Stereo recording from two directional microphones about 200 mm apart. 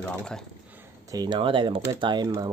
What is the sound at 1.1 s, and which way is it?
Speech, 20° right (ahead or behind).